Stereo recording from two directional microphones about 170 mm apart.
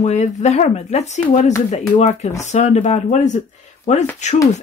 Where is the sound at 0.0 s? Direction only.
40° left (ahead or behind).